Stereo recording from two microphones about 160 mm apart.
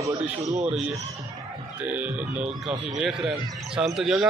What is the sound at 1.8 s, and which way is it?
A man's voice, 10° right (ahead or behind).